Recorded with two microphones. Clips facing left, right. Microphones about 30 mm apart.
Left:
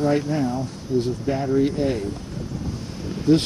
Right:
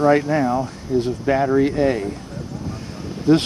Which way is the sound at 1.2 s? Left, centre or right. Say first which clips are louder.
Right 6 dB; right.